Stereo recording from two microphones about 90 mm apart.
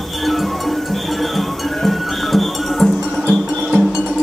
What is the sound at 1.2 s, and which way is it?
Cowbell, centre (ahead or behind).